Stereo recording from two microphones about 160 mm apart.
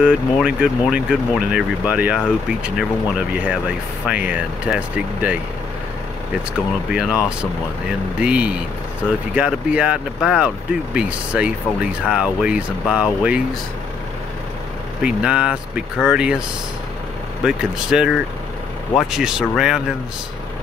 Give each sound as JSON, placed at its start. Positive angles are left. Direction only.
{"t": 0.0, "sound": "speech", "side_deg": -5}
{"t": 6.9, "sound": "speech", "side_deg": -5}
{"t": 15.0, "sound": "speech", "side_deg": -5}
{"t": 17.5, "sound": "speech", "side_deg": -5}